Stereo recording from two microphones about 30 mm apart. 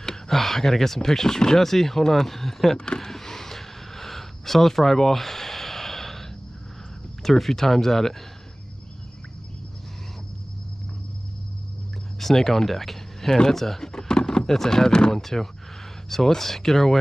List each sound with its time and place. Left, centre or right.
0.3 s speech: centre
1.6 s speech: centre
3.0 s gasp: centre
7.2 s speech: centre
12.2 s speech: centre
13.9 s a sound: left
14.4 s speech: centre
14.9 s speech: left
15.1 s speech: centre